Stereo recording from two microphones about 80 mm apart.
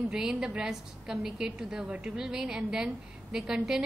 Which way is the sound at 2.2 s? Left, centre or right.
Centre.